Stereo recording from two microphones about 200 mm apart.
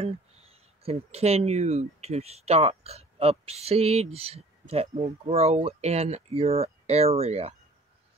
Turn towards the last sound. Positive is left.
turn(degrees=-30)  # may be behind; listen again after turning